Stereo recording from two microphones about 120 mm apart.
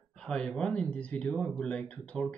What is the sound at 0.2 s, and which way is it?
Speech, 5° left (ahead or behind).